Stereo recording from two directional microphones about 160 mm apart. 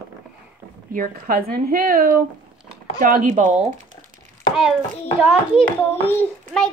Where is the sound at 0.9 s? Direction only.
60° right (ahead or behind).